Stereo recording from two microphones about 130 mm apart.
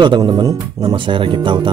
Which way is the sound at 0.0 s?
35° right (ahead or behind).